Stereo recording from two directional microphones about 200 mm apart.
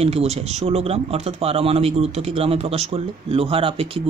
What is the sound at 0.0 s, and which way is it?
A man's voice, 30° right (ahead or behind).